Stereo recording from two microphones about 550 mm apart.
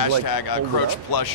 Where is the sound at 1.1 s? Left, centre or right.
Left.